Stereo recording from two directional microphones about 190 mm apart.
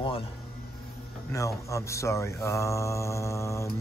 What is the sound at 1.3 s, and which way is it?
Mantra, 15° left (ahead or behind).